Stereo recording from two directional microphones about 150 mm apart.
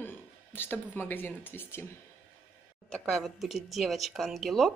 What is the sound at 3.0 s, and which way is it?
Speech, centre (ahead or behind).